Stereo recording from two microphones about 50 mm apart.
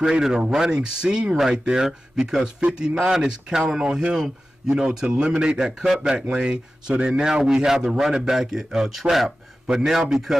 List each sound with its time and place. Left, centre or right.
0.0 s a man's voice: centre
2.6 s a man's voice: right